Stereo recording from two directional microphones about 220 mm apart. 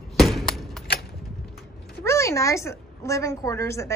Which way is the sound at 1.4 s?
Centre (ahead or behind).